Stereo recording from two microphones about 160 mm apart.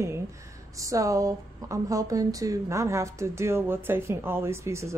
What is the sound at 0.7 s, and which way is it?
Speech, 20° right (ahead or behind).